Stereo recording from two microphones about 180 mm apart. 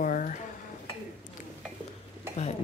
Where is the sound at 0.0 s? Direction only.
45° left (ahead or behind).